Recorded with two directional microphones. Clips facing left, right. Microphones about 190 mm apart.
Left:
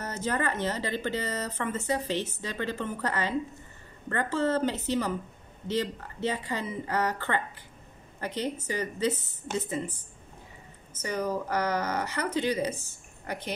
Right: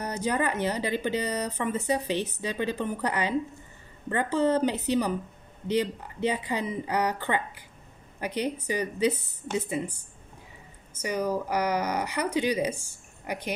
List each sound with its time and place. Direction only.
0.0 s speech: 15° right (ahead or behind)
11.0 s speech: 10° right (ahead or behind)